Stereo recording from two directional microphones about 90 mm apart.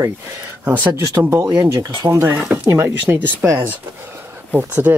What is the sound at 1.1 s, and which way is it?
Speech, 30° right (ahead or behind).